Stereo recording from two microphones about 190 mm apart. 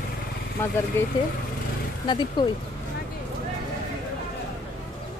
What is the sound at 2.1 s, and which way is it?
Speech, 25° left (ahead or behind).